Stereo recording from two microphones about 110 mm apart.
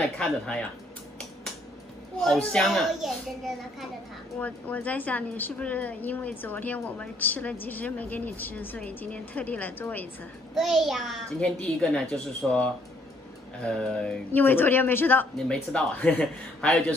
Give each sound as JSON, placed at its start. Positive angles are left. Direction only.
{"t": 0.2, "sound": "a woman's voice", "side_deg": 10}
{"t": 2.2, "sound": "speech", "side_deg": 5}
{"t": 4.4, "sound": "a woman's voice", "side_deg": 15}
{"t": 10.5, "sound": "speech", "side_deg": 0}
{"t": 11.3, "sound": "a woman's voice", "side_deg": 10}
{"t": 15.3, "sound": "a woman's voice", "side_deg": 10}